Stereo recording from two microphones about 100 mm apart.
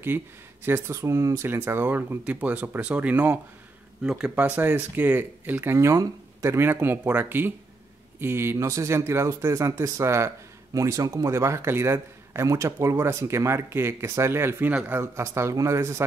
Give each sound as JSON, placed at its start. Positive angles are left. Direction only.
{"t": 0.7, "sound": "speech", "side_deg": -25}
{"t": 4.4, "sound": "speech", "side_deg": -20}
{"t": 15.0, "sound": "speech", "side_deg": -25}